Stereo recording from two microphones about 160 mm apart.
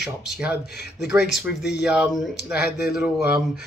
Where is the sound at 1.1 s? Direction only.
5° right (ahead or behind).